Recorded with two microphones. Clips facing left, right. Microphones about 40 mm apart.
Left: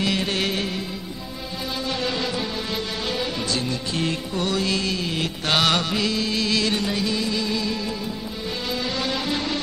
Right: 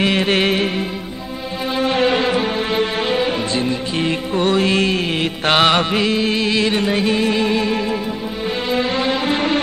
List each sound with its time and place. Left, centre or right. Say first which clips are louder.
0.0 s music: right 7 dB; right